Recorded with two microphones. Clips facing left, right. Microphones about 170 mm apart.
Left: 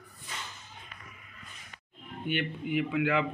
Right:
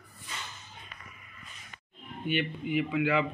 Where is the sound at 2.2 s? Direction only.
55° left (ahead or behind).